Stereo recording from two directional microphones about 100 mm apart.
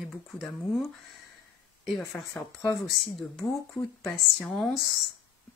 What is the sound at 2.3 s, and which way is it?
Speech, 30° left (ahead or behind).